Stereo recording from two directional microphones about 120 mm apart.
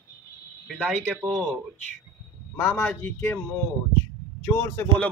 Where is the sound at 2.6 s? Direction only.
20° left (ahead or behind).